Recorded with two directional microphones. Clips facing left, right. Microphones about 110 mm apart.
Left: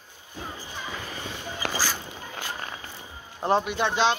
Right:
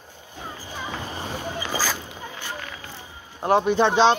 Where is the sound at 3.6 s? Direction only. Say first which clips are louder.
Right 6 dB; 30° right (ahead or behind).